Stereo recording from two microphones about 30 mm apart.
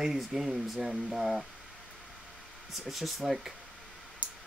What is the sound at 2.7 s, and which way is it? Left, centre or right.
Speech, centre.